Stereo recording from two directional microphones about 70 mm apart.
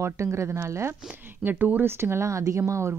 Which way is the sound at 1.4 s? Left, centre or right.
Right.